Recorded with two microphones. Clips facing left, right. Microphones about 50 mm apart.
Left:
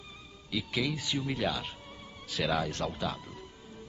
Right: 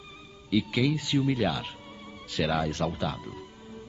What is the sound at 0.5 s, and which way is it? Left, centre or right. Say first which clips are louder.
Speech: right 7 dB; centre.